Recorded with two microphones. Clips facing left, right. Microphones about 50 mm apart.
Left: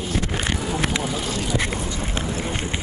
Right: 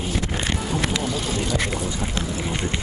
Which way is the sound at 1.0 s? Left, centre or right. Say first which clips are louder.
Right 1 dB; centre.